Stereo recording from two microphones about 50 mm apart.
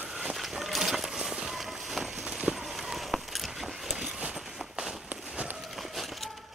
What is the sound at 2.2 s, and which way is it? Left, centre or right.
Run, centre.